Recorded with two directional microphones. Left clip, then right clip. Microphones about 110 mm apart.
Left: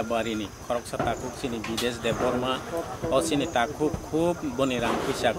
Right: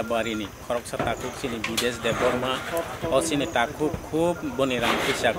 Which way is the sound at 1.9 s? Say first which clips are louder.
Right 2 dB; centre (ahead or behind).